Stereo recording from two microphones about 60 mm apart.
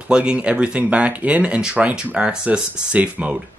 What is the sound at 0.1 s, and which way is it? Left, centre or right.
Speech, centre.